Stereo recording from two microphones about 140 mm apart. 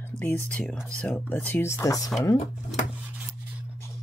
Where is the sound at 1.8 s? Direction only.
25° left (ahead or behind).